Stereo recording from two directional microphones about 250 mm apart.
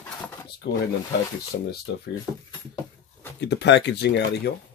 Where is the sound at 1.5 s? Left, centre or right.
Left.